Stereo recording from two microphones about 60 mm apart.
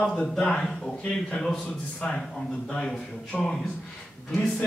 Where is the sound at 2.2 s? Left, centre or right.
Centre.